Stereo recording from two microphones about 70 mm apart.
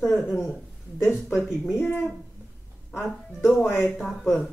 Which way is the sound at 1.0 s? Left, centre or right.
Left.